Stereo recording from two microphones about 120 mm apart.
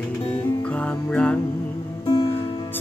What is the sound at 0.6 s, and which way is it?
Music, 10° left (ahead or behind).